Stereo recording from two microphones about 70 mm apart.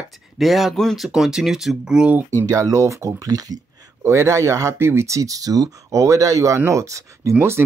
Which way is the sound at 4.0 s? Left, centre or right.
Right.